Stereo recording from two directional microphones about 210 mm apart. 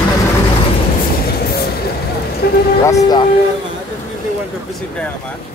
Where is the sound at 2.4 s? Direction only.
50° left (ahead or behind).